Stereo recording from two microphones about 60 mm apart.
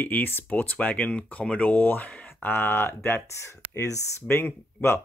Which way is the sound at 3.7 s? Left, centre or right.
Left.